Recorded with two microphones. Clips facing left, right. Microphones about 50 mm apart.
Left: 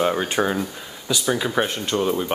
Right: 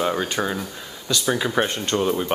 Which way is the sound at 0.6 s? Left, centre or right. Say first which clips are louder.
Left 4 dB; centre.